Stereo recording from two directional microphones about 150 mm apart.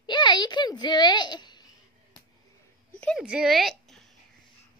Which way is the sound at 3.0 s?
5° left (ahead or behind).